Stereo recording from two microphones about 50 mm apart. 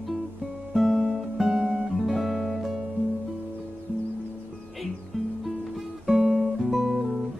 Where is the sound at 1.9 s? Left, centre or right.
Centre.